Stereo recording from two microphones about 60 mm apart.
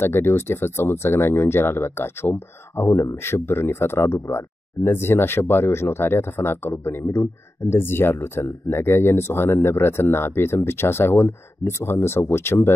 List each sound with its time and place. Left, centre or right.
0.0 s speech: left